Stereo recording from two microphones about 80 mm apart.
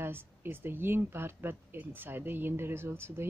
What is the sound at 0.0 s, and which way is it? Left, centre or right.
Speech, right.